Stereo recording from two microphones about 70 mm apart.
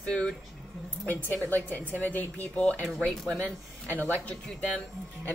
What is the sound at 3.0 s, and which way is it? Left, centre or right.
Speech, centre.